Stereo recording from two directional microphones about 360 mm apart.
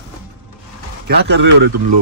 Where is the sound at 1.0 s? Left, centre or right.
Right.